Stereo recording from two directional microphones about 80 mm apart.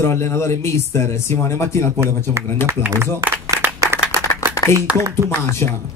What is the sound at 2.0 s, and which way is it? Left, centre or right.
A man's voice, right.